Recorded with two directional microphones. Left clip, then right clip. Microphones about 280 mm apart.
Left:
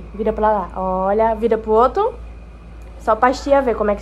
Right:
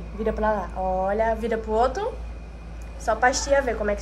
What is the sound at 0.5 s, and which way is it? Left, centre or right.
Speech, left.